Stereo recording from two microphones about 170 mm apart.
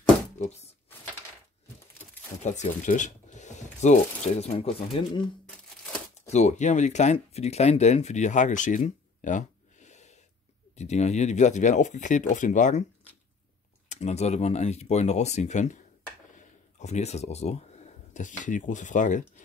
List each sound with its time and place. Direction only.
0.4 s speech: 40° left (ahead or behind)
2.4 s speech: 45° left (ahead or behind)
6.2 s speech: 40° left (ahead or behind)
13.8 s speech: 40° left (ahead or behind)